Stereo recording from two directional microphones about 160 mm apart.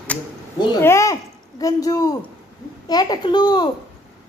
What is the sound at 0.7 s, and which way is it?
A woman's voice, 15° left (ahead or behind).